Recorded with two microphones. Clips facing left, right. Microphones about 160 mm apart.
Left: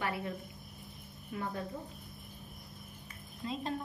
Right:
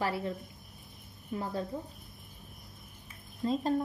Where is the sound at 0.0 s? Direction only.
30° right (ahead or behind).